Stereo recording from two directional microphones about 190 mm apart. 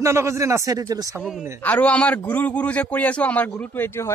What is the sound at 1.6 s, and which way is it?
A man's voice, 10° left (ahead or behind).